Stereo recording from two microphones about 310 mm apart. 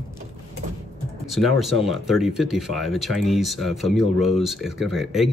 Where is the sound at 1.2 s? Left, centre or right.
Centre.